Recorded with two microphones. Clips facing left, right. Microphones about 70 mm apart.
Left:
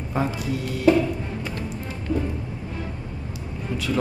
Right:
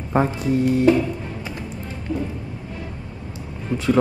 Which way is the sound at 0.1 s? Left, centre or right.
Right.